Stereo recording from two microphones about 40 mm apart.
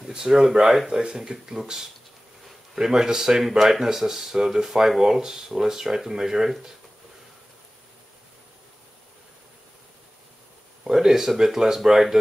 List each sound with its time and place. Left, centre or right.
0.1 s speech: centre
10.8 s speech: centre